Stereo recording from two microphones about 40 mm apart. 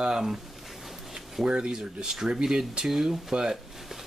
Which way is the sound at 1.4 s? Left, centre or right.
Right.